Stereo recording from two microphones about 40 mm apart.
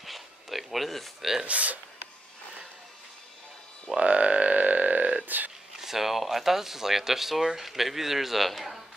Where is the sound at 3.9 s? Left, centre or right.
Right.